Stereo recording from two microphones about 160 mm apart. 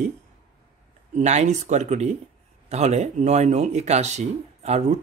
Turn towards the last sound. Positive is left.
turn(degrees=-45)  # may be behind; listen again after turning